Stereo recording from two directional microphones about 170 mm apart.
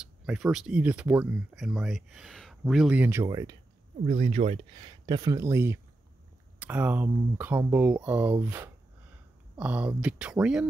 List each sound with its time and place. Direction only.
0.0 s speech: centre (ahead or behind); by 3.5 s 20° right (ahead or behind)
4.0 s speech: 35° right (ahead or behind); by 10.7 s 5° right (ahead or behind)